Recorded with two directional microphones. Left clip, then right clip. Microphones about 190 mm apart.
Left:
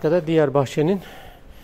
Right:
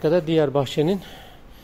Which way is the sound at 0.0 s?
10° left (ahead or behind).